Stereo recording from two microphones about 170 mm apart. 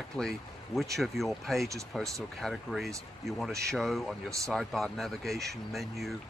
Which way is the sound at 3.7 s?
Centre (ahead or behind).